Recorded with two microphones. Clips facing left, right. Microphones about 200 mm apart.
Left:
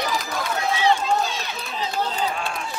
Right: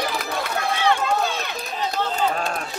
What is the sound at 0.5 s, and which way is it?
Run, 60° right (ahead or behind).